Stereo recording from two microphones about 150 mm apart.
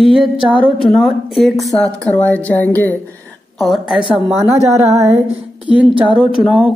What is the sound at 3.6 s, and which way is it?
Speech, centre (ahead or behind).